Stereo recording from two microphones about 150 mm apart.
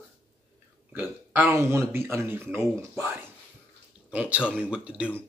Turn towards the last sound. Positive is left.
turn(degrees=-10)  # may be behind; listen again after turning